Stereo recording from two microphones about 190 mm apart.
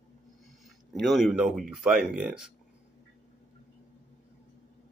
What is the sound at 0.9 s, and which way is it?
Speech, centre (ahead or behind).